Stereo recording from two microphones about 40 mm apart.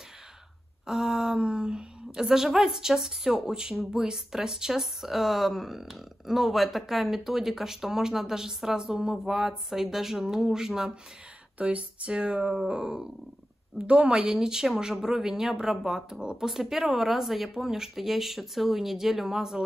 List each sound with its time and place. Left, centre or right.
0.8 s speech: centre
2.2 s speech: centre
11.5 s speech: right
12.1 s speech: right
14.3 s speech: centre
16.6 s speech: centre